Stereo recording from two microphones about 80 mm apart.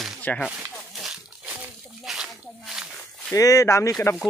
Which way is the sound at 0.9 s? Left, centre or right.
Centre.